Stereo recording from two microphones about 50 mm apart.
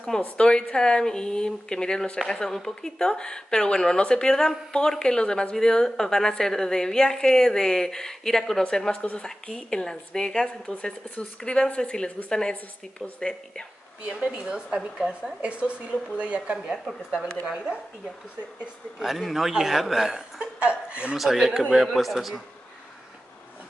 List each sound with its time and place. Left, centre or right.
0.2 s speech: centre
14.0 s a woman's voice: centre
15.4 s speech: right
16.6 s a woman's voice: centre
18.9 s speech: centre
20.3 s speech: right
21.2 s a woman's voice: centre